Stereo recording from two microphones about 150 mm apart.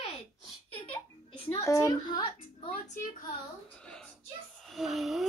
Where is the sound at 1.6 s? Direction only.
20° left (ahead or behind).